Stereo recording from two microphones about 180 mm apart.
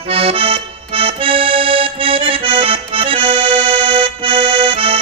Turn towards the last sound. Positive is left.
turn(degrees=-30)  # may be behind; listen again after turning